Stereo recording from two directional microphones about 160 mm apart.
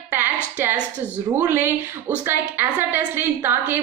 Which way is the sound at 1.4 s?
15° right (ahead or behind).